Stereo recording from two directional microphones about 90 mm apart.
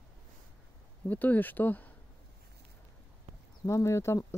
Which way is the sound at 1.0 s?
20° left (ahead or behind).